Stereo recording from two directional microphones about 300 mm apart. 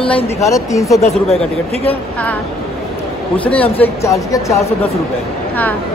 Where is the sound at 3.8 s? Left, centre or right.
Centre.